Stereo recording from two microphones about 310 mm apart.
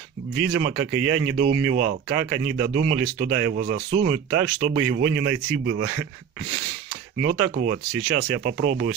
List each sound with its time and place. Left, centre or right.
0.5 s speech: right
7.2 s speech: right